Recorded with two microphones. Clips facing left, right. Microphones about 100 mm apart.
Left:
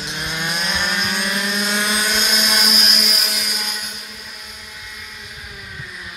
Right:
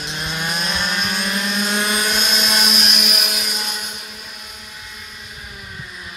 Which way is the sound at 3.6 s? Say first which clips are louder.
Right 1 dB; centre (ahead or behind).